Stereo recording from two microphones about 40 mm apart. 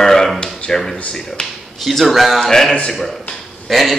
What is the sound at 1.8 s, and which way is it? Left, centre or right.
Speech, centre.